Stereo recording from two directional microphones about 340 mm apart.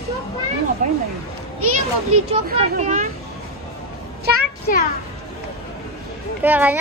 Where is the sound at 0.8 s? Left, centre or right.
Right.